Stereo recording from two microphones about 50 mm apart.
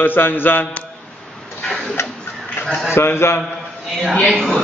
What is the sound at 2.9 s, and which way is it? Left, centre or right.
Speech, left.